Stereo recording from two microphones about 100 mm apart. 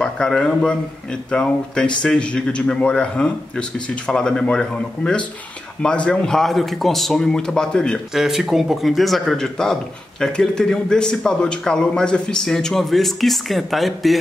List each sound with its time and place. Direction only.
0.0 s a man's voice: 10° left (ahead or behind)
8.1 s a man's voice: 5° right (ahead or behind)